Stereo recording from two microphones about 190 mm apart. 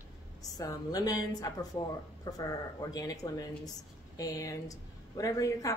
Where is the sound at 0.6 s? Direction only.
20° left (ahead or behind).